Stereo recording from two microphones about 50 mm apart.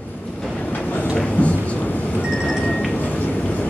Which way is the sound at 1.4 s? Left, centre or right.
Left.